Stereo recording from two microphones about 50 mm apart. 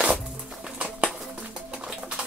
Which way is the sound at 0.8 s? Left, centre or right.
Right.